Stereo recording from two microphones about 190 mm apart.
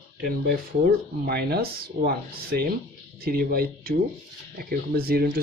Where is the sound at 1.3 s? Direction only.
55° right (ahead or behind).